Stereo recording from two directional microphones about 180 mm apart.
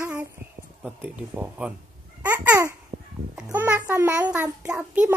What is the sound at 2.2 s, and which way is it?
A child's voice, 10° right (ahead or behind).